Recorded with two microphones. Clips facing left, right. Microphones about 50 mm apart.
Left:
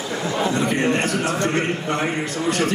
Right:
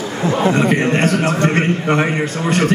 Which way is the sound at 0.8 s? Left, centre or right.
Right.